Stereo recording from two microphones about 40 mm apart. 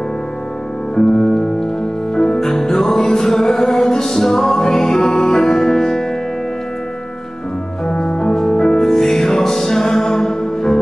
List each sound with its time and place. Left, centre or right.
0.9 s music: centre
7.8 s music: centre